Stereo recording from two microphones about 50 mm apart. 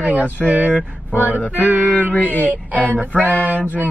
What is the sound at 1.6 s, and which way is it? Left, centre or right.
Speech, right.